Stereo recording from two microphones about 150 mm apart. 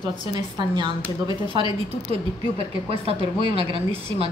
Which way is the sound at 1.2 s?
35° right (ahead or behind).